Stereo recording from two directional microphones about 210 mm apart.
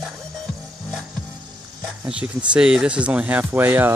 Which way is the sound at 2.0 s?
5° right (ahead or behind).